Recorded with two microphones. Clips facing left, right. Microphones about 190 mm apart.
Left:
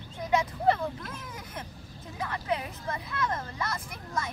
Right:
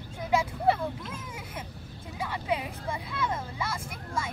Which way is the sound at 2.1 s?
10° right (ahead or behind).